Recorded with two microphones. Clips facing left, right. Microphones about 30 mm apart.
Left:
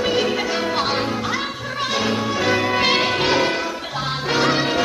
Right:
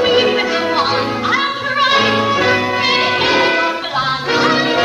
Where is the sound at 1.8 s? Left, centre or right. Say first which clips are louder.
Right 8 dB; right.